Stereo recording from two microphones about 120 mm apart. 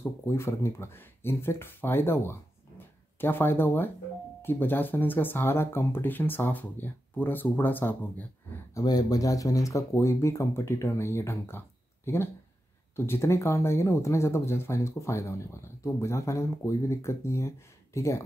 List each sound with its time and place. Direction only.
0.0 s speech: 20° left (ahead or behind)
8.7 s speech: 30° left (ahead or behind)